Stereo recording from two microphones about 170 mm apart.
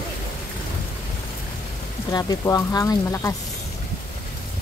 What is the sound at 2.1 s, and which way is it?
Speech, 20° left (ahead or behind).